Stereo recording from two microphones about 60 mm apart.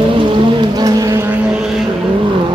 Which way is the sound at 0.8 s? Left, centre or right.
Right.